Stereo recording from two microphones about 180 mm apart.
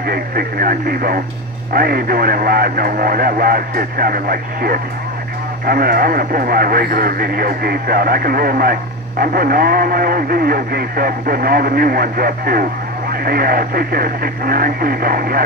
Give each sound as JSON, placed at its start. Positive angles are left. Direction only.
{"t": 0.0, "sound": "speech", "side_deg": -55}